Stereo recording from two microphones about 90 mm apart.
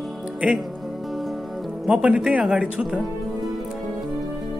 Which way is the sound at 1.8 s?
10° right (ahead or behind).